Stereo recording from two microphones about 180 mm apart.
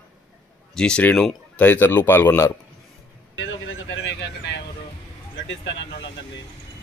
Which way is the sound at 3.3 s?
90° left.